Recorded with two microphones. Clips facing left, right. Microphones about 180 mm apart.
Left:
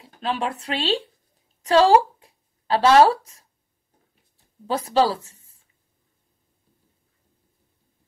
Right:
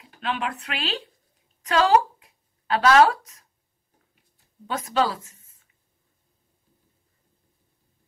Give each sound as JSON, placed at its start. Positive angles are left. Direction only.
{"t": 0.0, "sound": "speech", "side_deg": 35}
{"t": 1.6, "sound": "a sound", "side_deg": 30}
{"t": 4.6, "sound": "speech", "side_deg": 30}